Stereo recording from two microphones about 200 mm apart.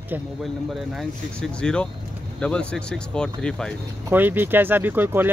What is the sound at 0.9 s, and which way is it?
Speech, 5° left (ahead or behind).